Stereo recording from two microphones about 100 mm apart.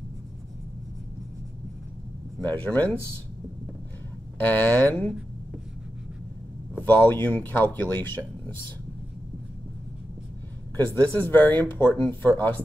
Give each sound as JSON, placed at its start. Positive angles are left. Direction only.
{"t": 2.4, "sound": "speech", "side_deg": 15}
{"t": 4.4, "sound": "speech", "side_deg": 20}
{"t": 6.8, "sound": "speech", "side_deg": 20}
{"t": 10.8, "sound": "speech", "side_deg": 15}